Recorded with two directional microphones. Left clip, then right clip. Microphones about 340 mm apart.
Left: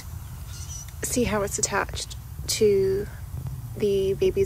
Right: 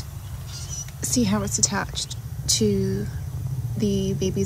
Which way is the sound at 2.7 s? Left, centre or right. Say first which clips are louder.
Left 5 dB; right.